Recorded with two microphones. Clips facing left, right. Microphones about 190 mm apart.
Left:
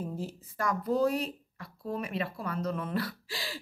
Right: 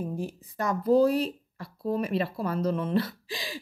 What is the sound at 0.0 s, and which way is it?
Speech, 15° right (ahead or behind).